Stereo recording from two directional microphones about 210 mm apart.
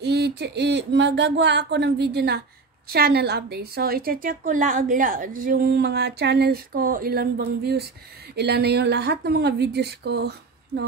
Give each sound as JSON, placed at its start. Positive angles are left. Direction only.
{"t": 0.0, "sound": "a woman's voice", "side_deg": -50}